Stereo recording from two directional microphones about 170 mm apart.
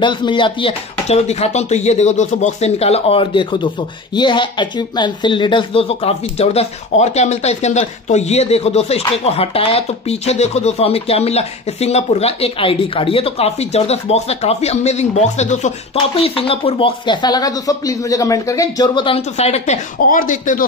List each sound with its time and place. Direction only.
0.0 s speech: 25° left (ahead or behind); by 20.6 s 50° left (ahead or behind)